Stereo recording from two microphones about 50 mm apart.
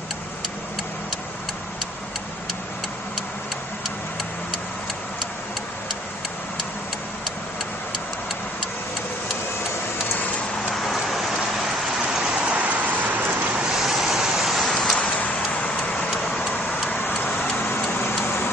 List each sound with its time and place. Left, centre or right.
10.7 s vehicle: centre
12.1 s vehicle: centre
12.5 s vehicle: right
13.6 s vehicle: centre
13.8 s a sound: centre
15.0 s vehicle: left